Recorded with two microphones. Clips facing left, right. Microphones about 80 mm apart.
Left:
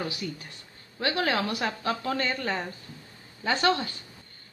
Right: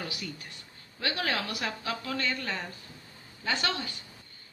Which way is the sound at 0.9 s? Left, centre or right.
Left.